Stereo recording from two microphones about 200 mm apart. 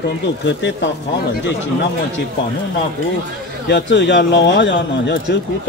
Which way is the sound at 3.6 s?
60° left (ahead or behind).